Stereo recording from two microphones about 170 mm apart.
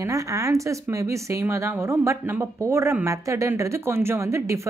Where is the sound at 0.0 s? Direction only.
20° right (ahead or behind).